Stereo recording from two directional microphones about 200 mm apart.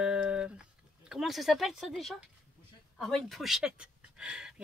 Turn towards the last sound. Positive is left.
turn(degrees=-5)  # may be behind; listen again after turning